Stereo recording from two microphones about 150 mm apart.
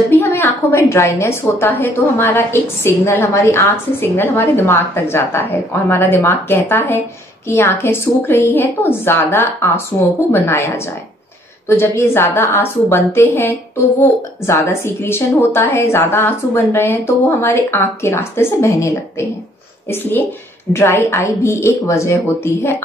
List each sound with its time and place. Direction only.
0.1 s a woman's voice: 15° left (ahead or behind)